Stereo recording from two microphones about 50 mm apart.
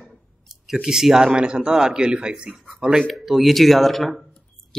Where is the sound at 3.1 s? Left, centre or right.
Centre.